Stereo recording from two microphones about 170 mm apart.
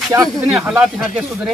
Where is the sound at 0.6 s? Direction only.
5° right (ahead or behind).